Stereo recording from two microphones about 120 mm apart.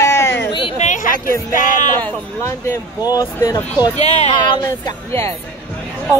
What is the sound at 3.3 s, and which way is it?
Speech, 20° left (ahead or behind).